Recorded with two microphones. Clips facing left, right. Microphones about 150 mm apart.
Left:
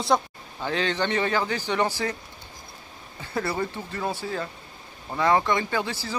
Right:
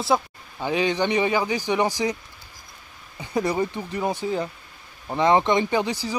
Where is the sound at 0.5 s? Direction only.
15° right (ahead or behind).